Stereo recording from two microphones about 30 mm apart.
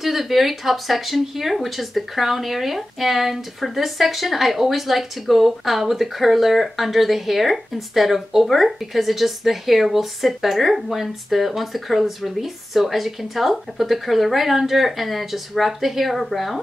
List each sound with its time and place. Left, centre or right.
0.0 s speech: centre